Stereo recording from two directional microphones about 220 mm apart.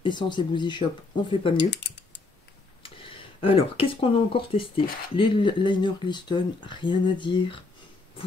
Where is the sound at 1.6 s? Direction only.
50° left (ahead or behind).